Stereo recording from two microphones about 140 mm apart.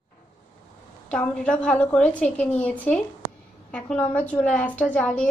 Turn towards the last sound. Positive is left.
turn(degrees=10)  # may be behind; listen again after turning